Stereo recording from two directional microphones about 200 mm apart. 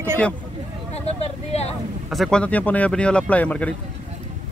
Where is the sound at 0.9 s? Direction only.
30° left (ahead or behind).